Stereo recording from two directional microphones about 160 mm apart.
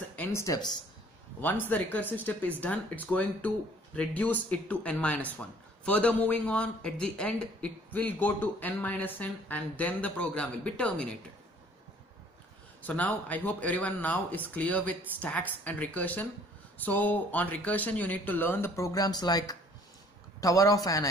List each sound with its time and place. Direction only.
0.1 s speech: 15° left (ahead or behind)
12.8 s speech: 10° left (ahead or behind)